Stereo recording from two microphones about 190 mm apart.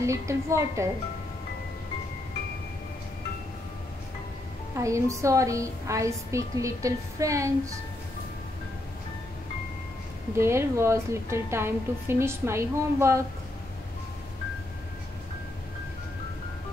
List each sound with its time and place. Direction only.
0.0 s a woman's voice: 15° right (ahead or behind)
4.7 s a woman's voice: 15° right (ahead or behind)
10.3 s a woman's voice: 15° right (ahead or behind)